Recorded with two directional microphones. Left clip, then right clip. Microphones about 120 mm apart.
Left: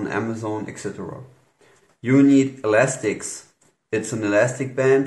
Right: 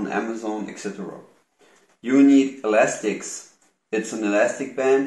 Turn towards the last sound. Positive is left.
turn(degrees=20)  # may be behind; listen again after turning